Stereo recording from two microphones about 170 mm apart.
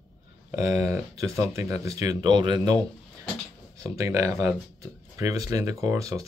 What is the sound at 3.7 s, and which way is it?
Speech, 20° right (ahead or behind).